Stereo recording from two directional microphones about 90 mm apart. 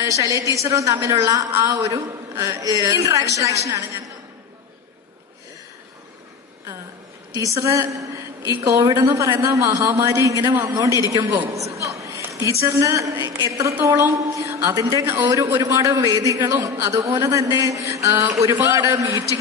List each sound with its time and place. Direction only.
0.0 s a woman's voice: 35° right (ahead or behind)
7.3 s a woman's voice: 35° right (ahead or behind)